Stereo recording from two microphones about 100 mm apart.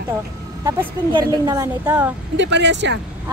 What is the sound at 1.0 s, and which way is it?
Speech, 35° right (ahead or behind).